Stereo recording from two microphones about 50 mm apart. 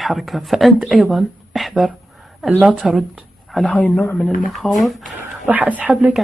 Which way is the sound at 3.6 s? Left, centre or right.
Left.